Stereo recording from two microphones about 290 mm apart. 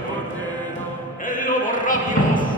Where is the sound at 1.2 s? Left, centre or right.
Left.